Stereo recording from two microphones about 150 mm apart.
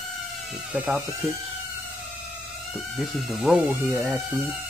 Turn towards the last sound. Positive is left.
turn(degrees=-5)  # may be behind; listen again after turning